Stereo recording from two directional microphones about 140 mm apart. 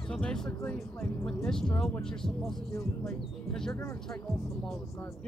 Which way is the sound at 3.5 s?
5° left (ahead or behind).